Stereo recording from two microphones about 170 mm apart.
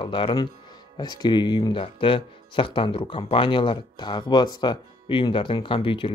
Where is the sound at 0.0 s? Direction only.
30° left (ahead or behind).